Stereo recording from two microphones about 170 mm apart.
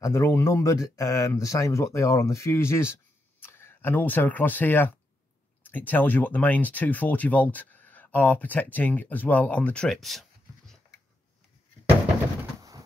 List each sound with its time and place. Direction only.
0.0 s speech: 15° left (ahead or behind); by 10.2 s centre (ahead or behind)